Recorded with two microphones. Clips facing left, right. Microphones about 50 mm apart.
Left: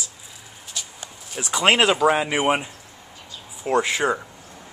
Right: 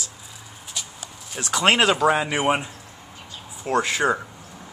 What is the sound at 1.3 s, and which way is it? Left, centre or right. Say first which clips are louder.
Speech: left 1 dB; centre.